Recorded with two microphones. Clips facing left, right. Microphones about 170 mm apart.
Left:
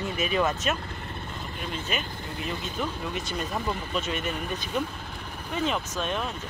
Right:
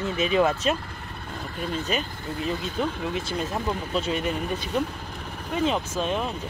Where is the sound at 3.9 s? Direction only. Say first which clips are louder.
Right 4 dB; 35° right (ahead or behind).